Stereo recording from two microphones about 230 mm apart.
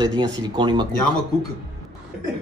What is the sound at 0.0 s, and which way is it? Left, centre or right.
Speech, centre.